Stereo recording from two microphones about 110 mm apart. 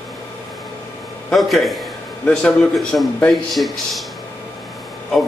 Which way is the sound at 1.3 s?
Centre (ahead or behind).